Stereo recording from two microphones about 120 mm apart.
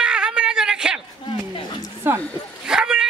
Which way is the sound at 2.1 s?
20° right (ahead or behind).